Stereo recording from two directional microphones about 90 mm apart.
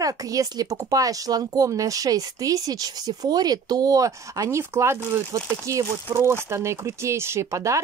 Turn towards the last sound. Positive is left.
turn(degrees=-35)  # may be behind; listen again after turning